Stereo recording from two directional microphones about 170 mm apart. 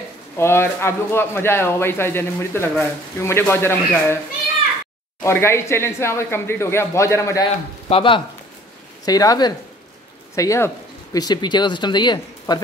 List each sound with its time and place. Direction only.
0.4 s speech: 15° left (ahead or behind)
5.2 s speech: 15° left (ahead or behind)
7.9 s speech: 30° left (ahead or behind)